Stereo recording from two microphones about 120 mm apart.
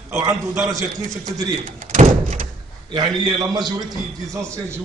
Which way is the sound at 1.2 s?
80° right.